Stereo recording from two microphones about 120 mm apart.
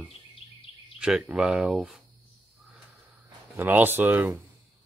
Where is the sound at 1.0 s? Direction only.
10° right (ahead or behind).